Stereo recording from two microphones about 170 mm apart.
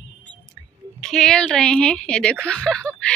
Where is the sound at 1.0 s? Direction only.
5° left (ahead or behind).